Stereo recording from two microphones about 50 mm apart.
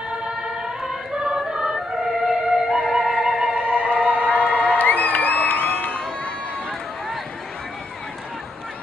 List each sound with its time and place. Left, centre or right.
0.4 s choir: centre
2.9 s music: centre
3.6 s music: right
4.3 s music: left